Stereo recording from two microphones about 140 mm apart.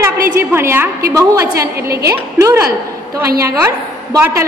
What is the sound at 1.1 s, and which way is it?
A woman's voice, 20° right (ahead or behind).